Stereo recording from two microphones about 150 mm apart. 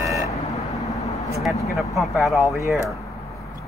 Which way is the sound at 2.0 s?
Centre (ahead or behind).